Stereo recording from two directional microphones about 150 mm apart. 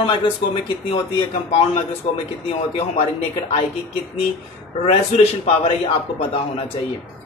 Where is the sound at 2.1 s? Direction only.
40° left (ahead or behind).